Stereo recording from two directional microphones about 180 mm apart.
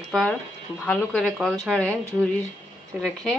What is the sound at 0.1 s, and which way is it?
A woman's voice, 5° left (ahead or behind).